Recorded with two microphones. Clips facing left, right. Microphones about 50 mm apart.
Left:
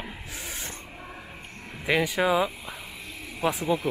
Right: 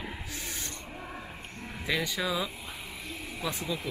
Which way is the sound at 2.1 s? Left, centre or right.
Left.